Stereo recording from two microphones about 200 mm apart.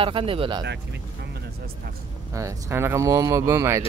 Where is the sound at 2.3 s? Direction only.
15° right (ahead or behind).